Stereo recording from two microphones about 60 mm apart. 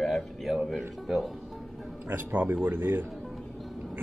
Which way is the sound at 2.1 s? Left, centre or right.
Right.